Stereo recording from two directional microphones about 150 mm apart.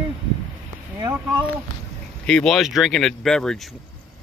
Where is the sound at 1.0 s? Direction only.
20° right (ahead or behind).